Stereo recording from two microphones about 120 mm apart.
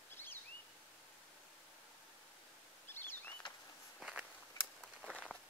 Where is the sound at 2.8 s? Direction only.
15° left (ahead or behind).